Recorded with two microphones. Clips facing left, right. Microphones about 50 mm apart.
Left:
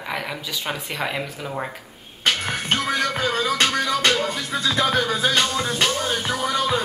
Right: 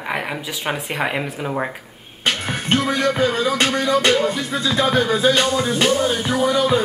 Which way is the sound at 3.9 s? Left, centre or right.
Centre.